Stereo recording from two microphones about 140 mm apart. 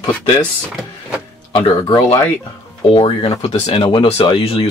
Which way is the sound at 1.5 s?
35° left (ahead or behind).